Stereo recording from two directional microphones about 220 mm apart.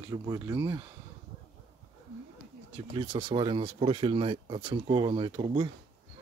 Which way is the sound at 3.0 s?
25° right (ahead or behind).